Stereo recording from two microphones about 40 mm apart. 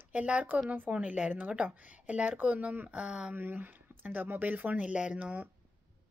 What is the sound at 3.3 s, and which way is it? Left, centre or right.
Speech, right.